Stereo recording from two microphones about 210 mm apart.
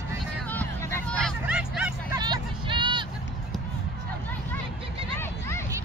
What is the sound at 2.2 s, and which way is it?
Vehicle, 20° right (ahead or behind).